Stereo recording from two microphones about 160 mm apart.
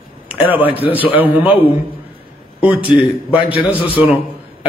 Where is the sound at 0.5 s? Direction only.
10° right (ahead or behind).